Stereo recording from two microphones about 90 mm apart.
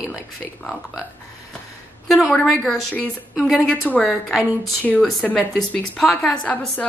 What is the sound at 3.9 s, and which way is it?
Speech, 15° left (ahead or behind).